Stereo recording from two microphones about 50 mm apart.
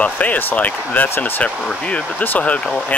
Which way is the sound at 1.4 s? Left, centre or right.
Left.